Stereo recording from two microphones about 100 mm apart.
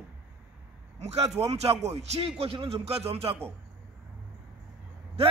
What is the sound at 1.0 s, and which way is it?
Speech, 90° right.